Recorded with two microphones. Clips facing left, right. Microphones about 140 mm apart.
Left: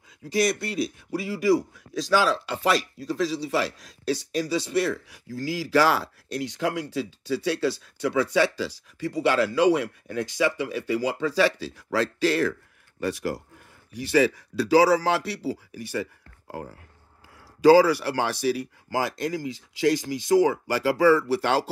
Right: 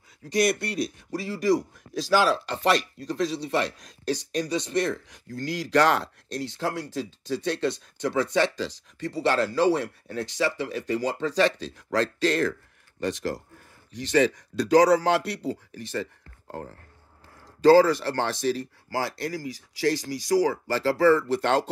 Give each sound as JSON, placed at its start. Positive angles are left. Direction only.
{"t": 0.2, "sound": "a man's voice", "side_deg": 5}